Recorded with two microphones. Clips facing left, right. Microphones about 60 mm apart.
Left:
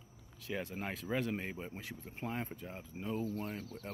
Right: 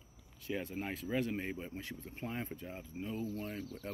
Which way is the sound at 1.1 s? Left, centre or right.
Left.